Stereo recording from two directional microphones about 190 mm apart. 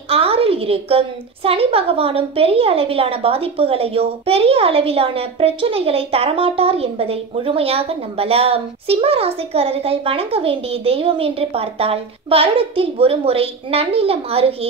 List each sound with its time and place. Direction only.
0.1 s a woman's voice: 30° right (ahead or behind)